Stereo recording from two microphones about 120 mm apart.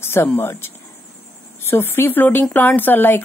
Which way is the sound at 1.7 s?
20° left (ahead or behind).